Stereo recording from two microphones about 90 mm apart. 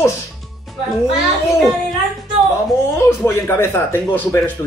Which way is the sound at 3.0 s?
30° left (ahead or behind).